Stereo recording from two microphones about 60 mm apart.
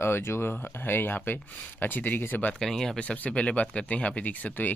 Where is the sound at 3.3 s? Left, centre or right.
Centre.